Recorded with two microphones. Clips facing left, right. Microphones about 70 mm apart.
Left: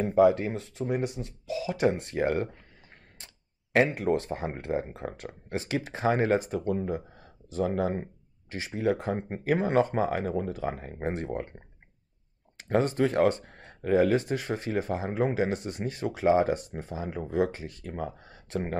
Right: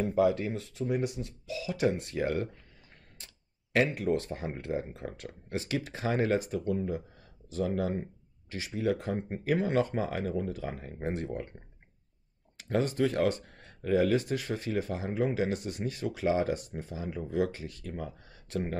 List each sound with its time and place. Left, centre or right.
0.0 s speech: left
3.7 s speech: left